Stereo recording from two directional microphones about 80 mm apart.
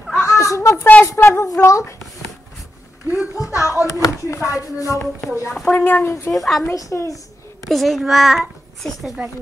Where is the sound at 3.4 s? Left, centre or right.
Left.